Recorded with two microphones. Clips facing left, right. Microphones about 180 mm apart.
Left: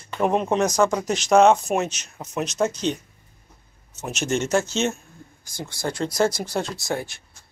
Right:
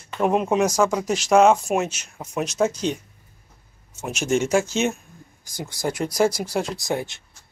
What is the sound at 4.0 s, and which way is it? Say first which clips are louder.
Speech: right 2 dB; 10° right (ahead or behind).